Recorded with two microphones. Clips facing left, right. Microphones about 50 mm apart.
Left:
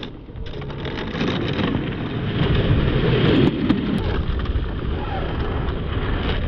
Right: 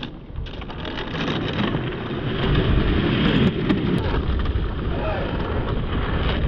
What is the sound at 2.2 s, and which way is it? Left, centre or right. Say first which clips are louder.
Vehicle: left 1 dB; centre.